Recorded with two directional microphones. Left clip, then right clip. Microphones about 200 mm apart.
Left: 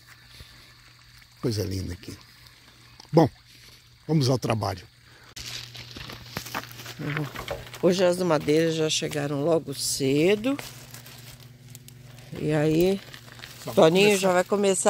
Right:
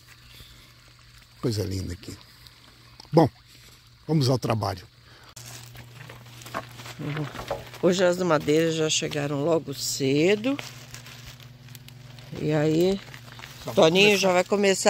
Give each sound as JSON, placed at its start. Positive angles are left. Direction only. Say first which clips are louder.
{"t": 1.4, "sound": "speech", "louder": "even", "side_deg": 0}
{"t": 3.0, "sound": "a sound", "louder": "even", "side_deg": 0}
{"t": 4.1, "sound": "speech", "louder": "even", "side_deg": 0}
{"t": 5.3, "sound": "a sound", "louder": "left 8 dB", "side_deg": -65}
{"t": 7.0, "sound": "speech", "louder": "left 2 dB", "side_deg": 0}
{"t": 12.3, "sound": "speech", "louder": "even", "side_deg": -5}
{"t": 13.0, "sound": "speech", "louder": "right 1 dB", "side_deg": 20}